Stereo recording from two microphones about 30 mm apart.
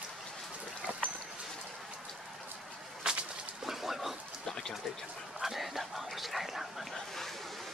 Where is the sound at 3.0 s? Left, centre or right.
Right.